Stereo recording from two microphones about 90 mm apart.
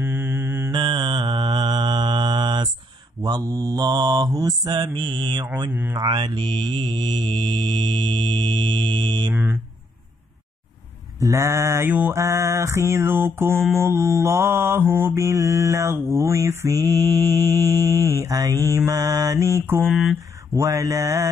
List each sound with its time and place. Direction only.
0.0 s mantra: 25° right (ahead or behind)
0.7 s mantra: 65° right (ahead or behind); by 4.8 s 50° right (ahead or behind)
5.7 s speech: 25° right (ahead or behind)
5.9 s mantra: 50° right (ahead or behind)
9.3 s a sound: 25° right (ahead or behind)
11.1 s mantra: 35° right (ahead or behind)
11.9 s speech: 20° right (ahead or behind)
12.2 s mantra: 35° right (ahead or behind)
19.9 s speech: 5° right (ahead or behind)
20.5 s mantra: 35° right (ahead or behind)